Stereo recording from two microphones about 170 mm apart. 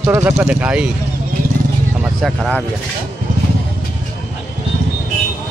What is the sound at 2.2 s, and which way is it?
Speech, centre (ahead or behind).